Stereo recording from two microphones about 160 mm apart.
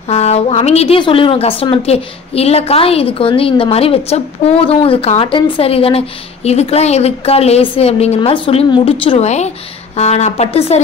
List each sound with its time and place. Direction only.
0.1 s a woman's voice: 40° left (ahead or behind)